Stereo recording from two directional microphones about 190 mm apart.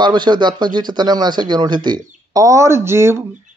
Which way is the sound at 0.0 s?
25° right (ahead or behind).